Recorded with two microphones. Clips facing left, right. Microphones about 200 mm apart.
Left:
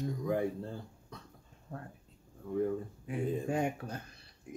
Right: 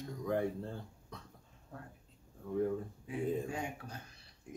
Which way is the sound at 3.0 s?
55° left (ahead or behind).